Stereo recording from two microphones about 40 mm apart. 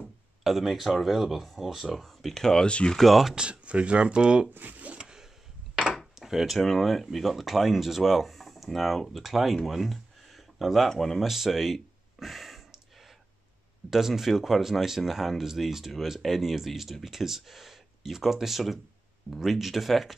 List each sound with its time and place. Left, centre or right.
0.4 s speech: centre
2.0 s speech: centre
2.6 s speech: left
3.0 s speech: centre
3.3 s speech: right
4.6 s speech: right
4.9 s a sound: centre
6.1 s speech: centre
9.7 s a sound: centre
10.9 s speech: centre
11.2 s a sound: centre
13.8 s speech: centre